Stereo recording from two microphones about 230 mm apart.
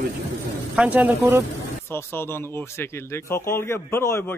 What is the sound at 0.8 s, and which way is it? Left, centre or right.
Speech, centre.